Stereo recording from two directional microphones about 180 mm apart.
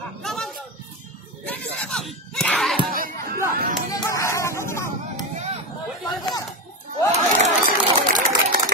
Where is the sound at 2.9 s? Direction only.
50° right (ahead or behind).